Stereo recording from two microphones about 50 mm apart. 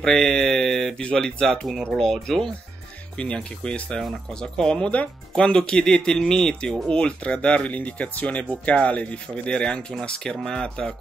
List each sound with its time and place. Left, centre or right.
0.0 s mantra: centre
1.1 s speech: centre
3.2 s speech: centre